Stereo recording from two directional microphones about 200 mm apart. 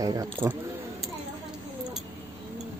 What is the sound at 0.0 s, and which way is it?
Speech, 15° right (ahead or behind).